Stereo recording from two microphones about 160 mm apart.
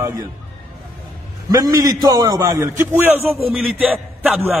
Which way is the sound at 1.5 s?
25° right (ahead or behind).